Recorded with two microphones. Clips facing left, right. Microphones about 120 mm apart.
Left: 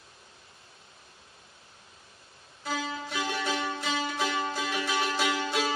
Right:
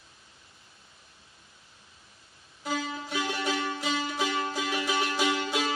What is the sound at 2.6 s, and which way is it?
Music, 5° right (ahead or behind).